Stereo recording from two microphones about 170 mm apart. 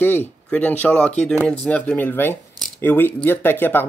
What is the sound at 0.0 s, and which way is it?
Speech, 10° left (ahead or behind).